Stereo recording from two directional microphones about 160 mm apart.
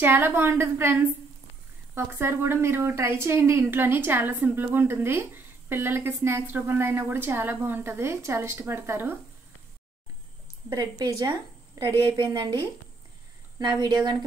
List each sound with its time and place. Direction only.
0.0 s a woman's voice: 15° right (ahead or behind)
2.0 s a woman's voice: 15° right (ahead or behind)
10.7 s a woman's voice: 25° right (ahead or behind)